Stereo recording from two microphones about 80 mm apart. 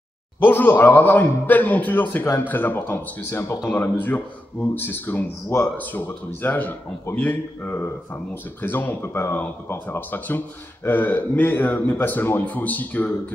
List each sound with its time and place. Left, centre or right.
0.4 s speech: left
4.0 s speech: left